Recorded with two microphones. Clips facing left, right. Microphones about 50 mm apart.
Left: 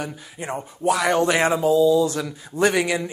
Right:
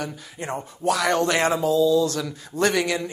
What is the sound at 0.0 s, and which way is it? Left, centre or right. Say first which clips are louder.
Speech: even; centre.